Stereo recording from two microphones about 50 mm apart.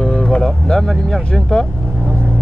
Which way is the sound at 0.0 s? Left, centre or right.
Centre.